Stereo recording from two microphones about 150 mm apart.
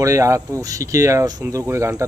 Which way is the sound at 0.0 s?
20° right (ahead or behind).